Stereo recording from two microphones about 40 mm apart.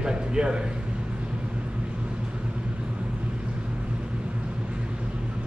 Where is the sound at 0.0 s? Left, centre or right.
Right.